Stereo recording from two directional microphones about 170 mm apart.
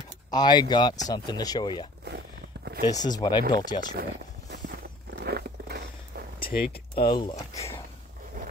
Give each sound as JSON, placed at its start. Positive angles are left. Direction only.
{"t": 0.3, "sound": "speech", "side_deg": 25}
{"t": 2.0, "sound": "walk", "side_deg": -70}
{"t": 2.8, "sound": "speech", "side_deg": 25}
{"t": 3.9, "sound": "walk", "side_deg": -65}
{"t": 6.4, "sound": "a sound", "side_deg": 60}
{"t": 7.1, "sound": "speech", "side_deg": 25}